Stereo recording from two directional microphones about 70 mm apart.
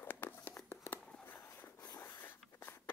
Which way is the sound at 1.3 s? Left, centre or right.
Left.